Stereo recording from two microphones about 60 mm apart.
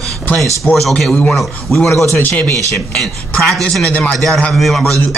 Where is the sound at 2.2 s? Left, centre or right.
Left.